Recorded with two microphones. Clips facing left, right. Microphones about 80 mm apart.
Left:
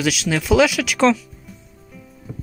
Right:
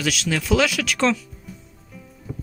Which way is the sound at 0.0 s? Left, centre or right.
Centre.